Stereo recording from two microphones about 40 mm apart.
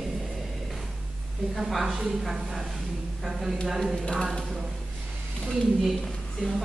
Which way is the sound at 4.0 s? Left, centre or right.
Centre.